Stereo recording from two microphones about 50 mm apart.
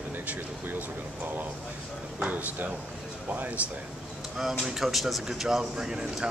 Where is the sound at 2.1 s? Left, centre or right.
Right.